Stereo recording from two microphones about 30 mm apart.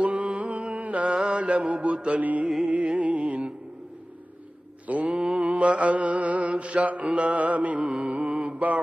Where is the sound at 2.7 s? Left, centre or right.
Right.